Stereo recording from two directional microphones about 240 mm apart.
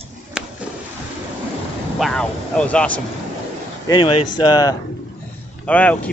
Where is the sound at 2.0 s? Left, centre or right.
Centre.